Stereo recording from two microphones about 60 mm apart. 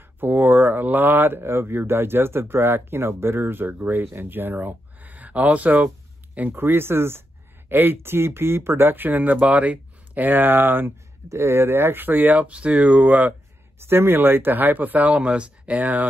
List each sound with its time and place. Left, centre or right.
0.2 s speech: right
6.5 s speech: right
11.2 s speech: right
13.7 s speech: right